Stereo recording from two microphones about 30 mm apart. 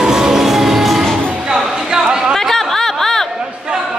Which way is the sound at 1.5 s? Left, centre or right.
Centre.